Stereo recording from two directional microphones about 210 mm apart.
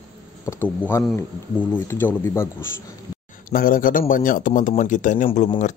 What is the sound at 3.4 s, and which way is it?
Speech, 40° left (ahead or behind).